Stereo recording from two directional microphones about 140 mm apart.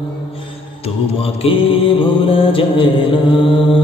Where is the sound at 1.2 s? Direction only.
40° left (ahead or behind).